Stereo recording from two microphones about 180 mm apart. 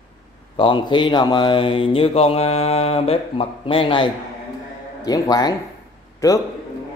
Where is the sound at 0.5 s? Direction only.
30° left (ahead or behind).